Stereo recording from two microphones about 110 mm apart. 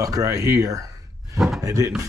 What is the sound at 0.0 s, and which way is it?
Speech, 30° right (ahead or behind).